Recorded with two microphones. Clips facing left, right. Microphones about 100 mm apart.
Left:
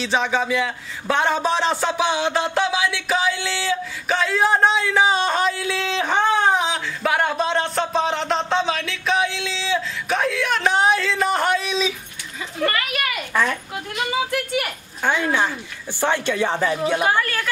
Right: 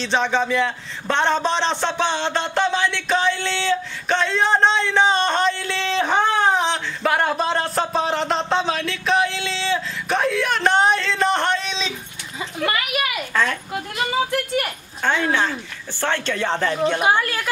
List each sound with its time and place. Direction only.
0.0 s a man's voice: 5° left (ahead or behind)
12.5 s a sound: 10° right (ahead or behind)
13.3 s a man's voice: 10° left (ahead or behind)
17.0 s speech: 10° right (ahead or behind)